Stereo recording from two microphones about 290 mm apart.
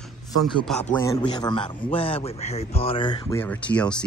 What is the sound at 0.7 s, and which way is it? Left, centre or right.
Speech, centre.